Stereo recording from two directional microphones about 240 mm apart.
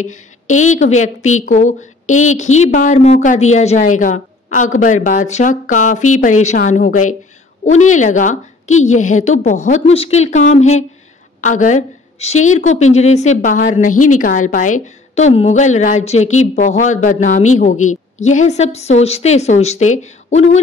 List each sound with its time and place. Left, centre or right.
0.0 s a woman's voice: left